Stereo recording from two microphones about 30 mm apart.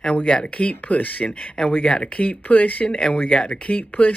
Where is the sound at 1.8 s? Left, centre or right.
Left.